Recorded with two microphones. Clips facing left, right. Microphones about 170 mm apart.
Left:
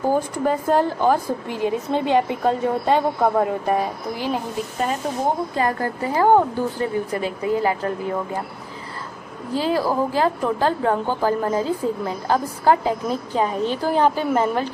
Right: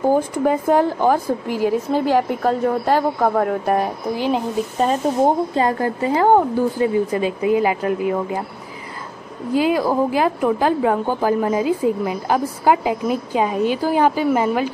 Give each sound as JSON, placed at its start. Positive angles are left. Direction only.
{"t": 0.1, "sound": "a woman's voice", "side_deg": -10}
{"t": 5.5, "sound": "a woman's voice", "side_deg": -25}
{"t": 9.5, "sound": "a woman's voice", "side_deg": -15}